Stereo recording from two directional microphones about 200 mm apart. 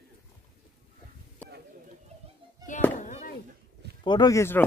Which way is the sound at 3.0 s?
35° left (ahead or behind).